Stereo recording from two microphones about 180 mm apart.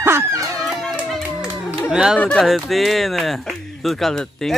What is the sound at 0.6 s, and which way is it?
Run, centre (ahead or behind).